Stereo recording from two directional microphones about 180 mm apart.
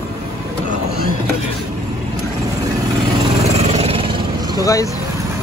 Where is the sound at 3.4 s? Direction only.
35° right (ahead or behind).